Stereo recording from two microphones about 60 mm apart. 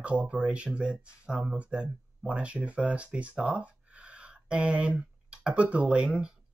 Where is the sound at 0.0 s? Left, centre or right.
Centre.